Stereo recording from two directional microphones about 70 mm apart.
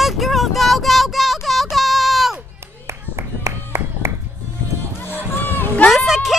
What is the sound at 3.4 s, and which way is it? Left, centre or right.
Music, right.